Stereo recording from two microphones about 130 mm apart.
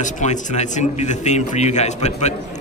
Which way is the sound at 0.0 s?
70° left (ahead or behind).